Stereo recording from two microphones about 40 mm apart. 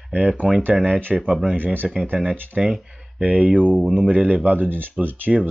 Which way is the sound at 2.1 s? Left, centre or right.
Centre.